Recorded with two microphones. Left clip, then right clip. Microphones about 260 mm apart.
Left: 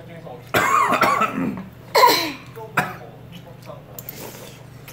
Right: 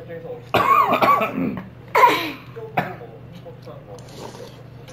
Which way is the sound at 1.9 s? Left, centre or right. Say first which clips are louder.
Even; left.